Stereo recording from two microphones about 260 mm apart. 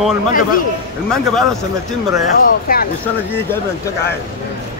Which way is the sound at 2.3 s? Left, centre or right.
Left.